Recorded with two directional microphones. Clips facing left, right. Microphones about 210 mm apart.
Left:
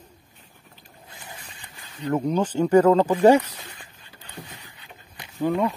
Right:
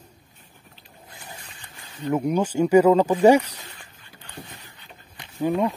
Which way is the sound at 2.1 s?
10° right (ahead or behind).